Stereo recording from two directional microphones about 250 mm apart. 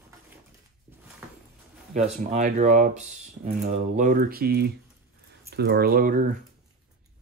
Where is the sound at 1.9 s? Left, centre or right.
Right.